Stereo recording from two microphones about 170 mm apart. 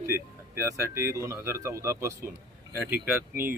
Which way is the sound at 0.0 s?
15° right (ahead or behind).